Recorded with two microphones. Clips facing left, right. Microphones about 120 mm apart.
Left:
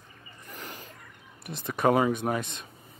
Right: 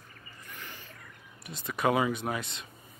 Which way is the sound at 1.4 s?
60° left (ahead or behind).